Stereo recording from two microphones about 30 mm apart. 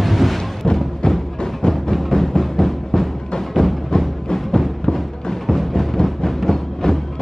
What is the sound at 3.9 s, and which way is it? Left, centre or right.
Music, left.